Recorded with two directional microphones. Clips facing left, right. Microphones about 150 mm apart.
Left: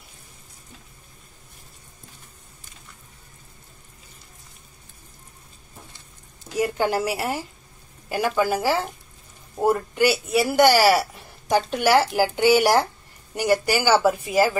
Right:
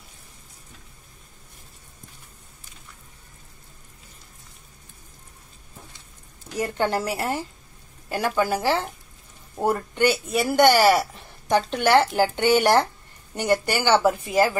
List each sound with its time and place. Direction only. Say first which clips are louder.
6.5 s speech: left 2 dB; 10° left (ahead or behind)